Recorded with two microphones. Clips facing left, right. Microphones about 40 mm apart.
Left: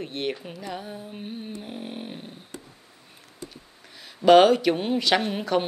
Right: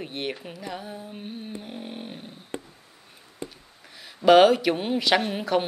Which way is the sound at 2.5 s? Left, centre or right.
Right.